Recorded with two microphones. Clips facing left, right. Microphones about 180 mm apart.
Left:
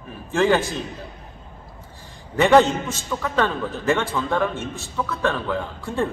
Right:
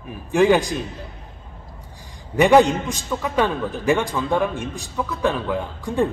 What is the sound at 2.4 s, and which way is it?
A man's voice, 15° right (ahead or behind).